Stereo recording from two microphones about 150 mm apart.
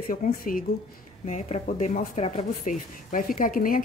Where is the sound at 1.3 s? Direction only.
55° left (ahead or behind).